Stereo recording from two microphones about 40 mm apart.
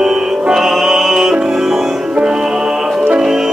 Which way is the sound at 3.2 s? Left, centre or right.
Centre.